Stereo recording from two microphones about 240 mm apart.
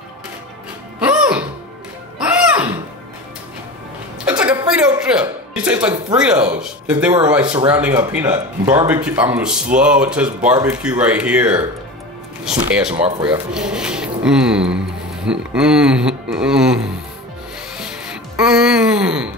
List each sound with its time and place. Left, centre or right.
0.9 s music: centre
4.2 s a sound: centre
6.1 s speech: centre
7.4 s speech: right
7.7 s speech: centre
12.6 s speech: centre
12.9 s speech: right
13.5 s speech: centre
17.7 s music: centre